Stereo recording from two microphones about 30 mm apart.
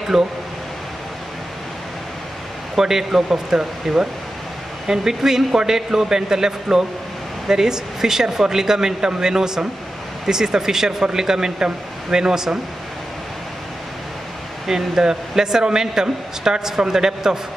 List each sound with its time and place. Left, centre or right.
0.1 s speech: centre
2.8 s speech: centre
14.7 s speech: centre